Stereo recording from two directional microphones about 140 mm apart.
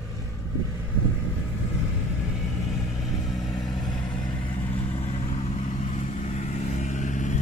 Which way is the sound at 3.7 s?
30° left (ahead or behind).